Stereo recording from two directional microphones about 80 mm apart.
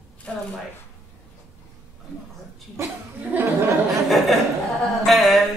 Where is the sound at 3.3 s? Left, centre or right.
Right.